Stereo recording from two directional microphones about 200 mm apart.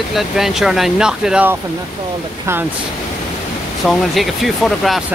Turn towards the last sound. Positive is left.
turn(degrees=0)  # may be behind; listen again after turning